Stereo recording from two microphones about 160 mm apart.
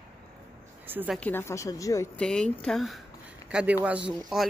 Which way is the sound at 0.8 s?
10° right (ahead or behind).